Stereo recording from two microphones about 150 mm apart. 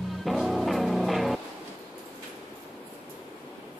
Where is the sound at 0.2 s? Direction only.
Centre (ahead or behind).